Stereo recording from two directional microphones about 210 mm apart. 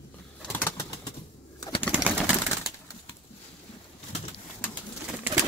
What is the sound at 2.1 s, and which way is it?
Pigeon, centre (ahead or behind).